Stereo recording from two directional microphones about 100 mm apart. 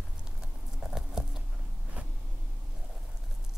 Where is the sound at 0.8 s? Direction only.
5° right (ahead or behind).